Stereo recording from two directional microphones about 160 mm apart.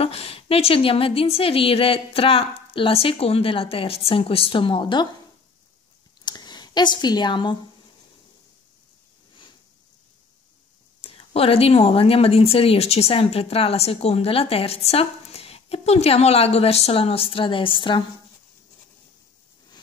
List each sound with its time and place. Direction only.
0.0 s speech: 40° left (ahead or behind)
6.2 s a sound: 25° left (ahead or behind)
11.0 s speech: 35° left (ahead or behind)